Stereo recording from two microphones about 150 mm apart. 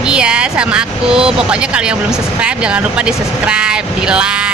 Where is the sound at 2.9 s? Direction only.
5° right (ahead or behind).